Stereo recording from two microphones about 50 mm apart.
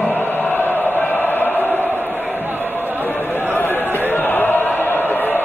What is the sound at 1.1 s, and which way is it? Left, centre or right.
Chant, left.